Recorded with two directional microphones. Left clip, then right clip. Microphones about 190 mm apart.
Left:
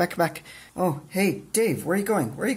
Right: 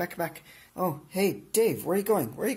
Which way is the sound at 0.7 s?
10° right (ahead or behind).